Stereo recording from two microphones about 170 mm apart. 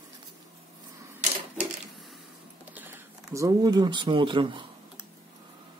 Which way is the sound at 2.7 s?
10° right (ahead or behind).